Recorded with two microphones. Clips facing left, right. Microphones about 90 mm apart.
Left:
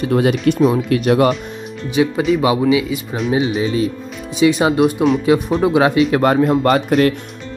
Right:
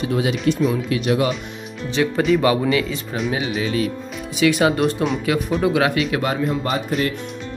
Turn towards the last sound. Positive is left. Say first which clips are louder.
# left 8 dB
turn(degrees=70)  # may be behind; listen again after turning